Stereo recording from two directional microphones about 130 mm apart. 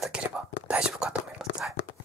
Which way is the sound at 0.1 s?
5° right (ahead or behind).